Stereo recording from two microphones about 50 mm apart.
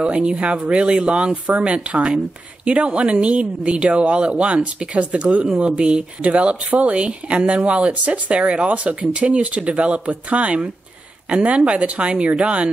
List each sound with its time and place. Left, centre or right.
0.1 s speech: right